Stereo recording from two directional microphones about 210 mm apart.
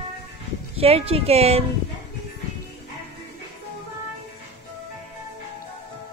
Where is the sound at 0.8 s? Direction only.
30° right (ahead or behind).